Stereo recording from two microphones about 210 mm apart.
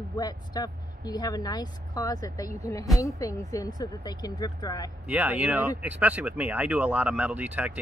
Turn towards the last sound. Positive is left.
turn(degrees=-5)  # may be behind; listen again after turning